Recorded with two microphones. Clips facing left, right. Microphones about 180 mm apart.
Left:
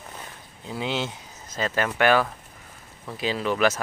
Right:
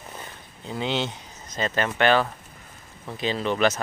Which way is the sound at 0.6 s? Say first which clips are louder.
Right 1 dB; 5° left (ahead or behind).